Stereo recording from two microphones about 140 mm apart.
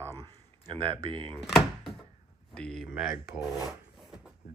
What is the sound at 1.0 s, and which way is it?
Speech, 35° right (ahead or behind).